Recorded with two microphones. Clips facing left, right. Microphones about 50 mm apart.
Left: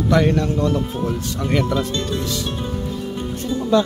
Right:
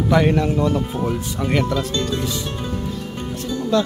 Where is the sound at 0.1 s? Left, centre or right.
Centre.